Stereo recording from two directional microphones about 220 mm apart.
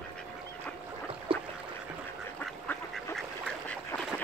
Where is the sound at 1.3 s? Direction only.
25° right (ahead or behind).